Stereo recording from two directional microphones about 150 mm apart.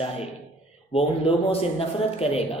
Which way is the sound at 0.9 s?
40° left (ahead or behind).